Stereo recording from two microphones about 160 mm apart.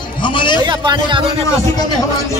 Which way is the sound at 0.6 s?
30° right (ahead or behind).